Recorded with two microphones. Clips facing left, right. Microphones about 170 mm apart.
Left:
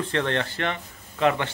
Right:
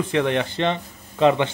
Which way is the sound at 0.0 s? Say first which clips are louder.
Right 4 dB; 15° right (ahead or behind).